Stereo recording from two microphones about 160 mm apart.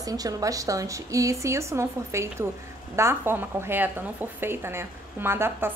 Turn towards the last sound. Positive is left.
turn(degrees=-15)  # may be behind; listen again after turning